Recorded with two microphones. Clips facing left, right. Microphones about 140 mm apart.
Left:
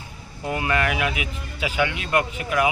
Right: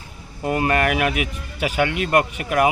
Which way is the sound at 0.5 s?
50° right (ahead or behind).